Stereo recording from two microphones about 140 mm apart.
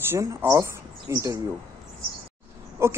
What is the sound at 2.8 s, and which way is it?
Speech, 20° right (ahead or behind).